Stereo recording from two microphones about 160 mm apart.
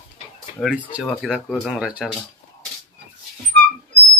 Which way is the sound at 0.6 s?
10° left (ahead or behind).